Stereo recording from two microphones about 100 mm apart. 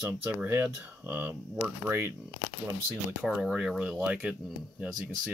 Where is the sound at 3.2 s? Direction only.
5° right (ahead or behind).